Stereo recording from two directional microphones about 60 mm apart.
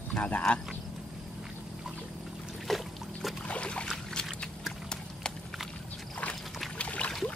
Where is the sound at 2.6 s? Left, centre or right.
Centre.